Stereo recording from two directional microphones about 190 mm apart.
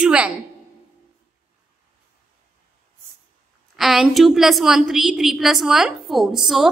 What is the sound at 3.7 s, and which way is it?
A woman's voice, centre (ahead or behind).